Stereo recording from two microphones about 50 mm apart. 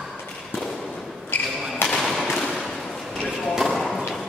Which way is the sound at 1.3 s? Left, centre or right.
Left.